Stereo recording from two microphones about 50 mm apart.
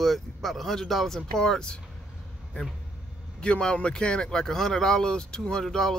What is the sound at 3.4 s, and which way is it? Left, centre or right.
Speech, centre.